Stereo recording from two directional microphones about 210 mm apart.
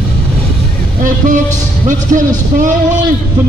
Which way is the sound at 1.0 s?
40° right (ahead or behind).